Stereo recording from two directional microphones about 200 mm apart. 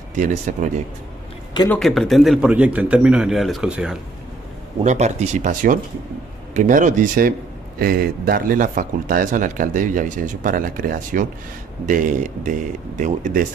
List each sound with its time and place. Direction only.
0.1 s speech: 40° right (ahead or behind)
1.7 s a man's voice: centre (ahead or behind)
4.8 s speech: 35° right (ahead or behind)